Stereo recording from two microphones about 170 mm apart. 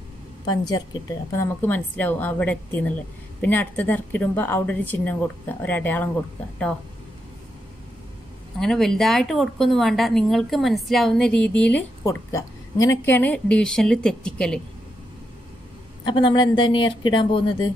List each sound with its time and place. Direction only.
0.5 s speech: 25° left (ahead or behind)
8.5 s speech: centre (ahead or behind)
16.1 s speech: 25° left (ahead or behind)